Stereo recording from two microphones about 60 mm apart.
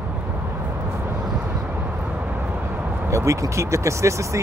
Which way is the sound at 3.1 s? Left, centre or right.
Right.